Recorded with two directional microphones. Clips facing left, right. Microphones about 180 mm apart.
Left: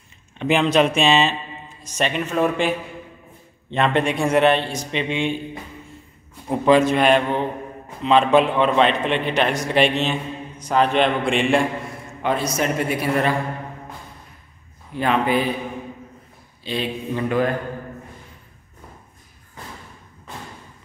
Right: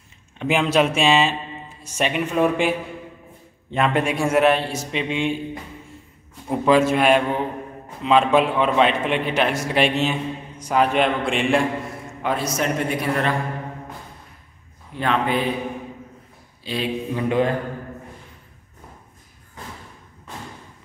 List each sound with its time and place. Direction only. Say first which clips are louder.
0.4 s speech: left 2 dB; 5° right (ahead or behind)
3.7 s a man's voice: left 1 dB; 5° right (ahead or behind)
6.5 s a man's voice: left 1 dB; centre (ahead or behind)
15.0 s a man's voice: left 2 dB; 5° left (ahead or behind)
16.6 s a man's voice: right 1 dB; 5° right (ahead or behind)
17.3 s mantra: right 1 dB; 25° right (ahead or behind)